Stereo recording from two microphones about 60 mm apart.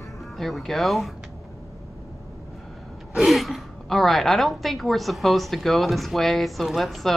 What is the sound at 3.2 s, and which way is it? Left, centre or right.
A woman's voice, centre.